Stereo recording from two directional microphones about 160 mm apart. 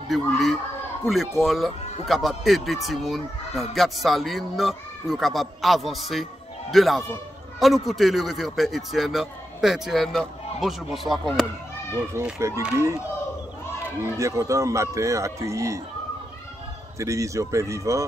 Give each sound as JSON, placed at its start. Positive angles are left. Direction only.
{"t": 0.1, "sound": "speech", "side_deg": 0}
{"t": 12.1, "sound": "speech", "side_deg": -15}
{"t": 14.0, "sound": "speech", "side_deg": -20}
{"t": 17.0, "sound": "speech", "side_deg": -20}